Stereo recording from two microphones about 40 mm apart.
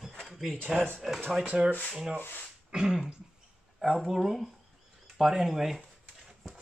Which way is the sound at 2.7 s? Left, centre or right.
Centre.